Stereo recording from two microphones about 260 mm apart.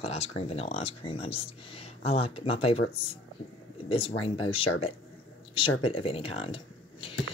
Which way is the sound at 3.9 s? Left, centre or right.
Left.